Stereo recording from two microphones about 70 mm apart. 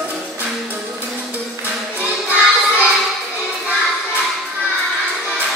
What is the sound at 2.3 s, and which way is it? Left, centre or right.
Music, centre.